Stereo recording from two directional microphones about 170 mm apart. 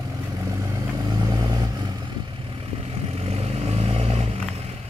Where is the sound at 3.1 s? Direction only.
35° right (ahead or behind).